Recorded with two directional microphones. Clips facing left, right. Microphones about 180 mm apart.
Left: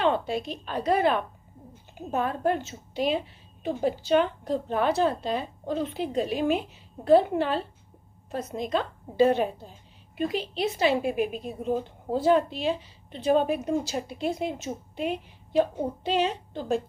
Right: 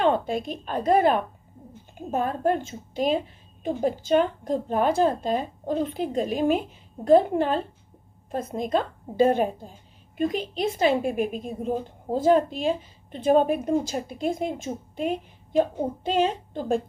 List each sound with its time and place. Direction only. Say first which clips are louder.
0.0 s a woman's voice: right 2 dB; 50° right (ahead or behind)